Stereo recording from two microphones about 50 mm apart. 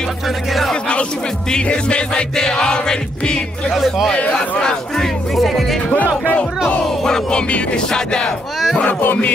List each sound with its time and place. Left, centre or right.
0.5 s music: centre
1.5 s music: left
3.7 s music: centre
4.3 s music: centre
7.0 s music: centre
8.8 s speech: left